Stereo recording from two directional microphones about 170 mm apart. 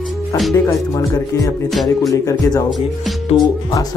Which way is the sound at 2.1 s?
20° left (ahead or behind).